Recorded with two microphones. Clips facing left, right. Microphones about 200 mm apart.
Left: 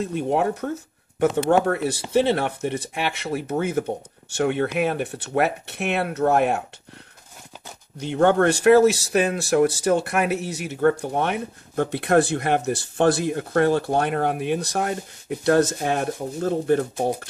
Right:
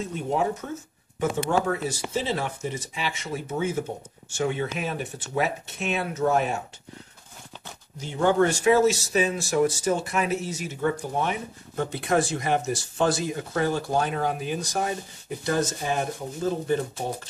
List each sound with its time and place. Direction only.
0.0 s speech: 65° left (ahead or behind)
1.7 s speech: 60° left (ahead or behind)
8.0 s speech: 65° left (ahead or behind)